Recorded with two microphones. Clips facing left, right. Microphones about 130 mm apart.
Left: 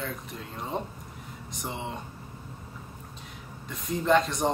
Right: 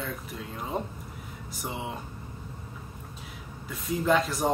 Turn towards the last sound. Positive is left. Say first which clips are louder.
# left 1 dB
turn(degrees=-5)  # may be behind; listen again after turning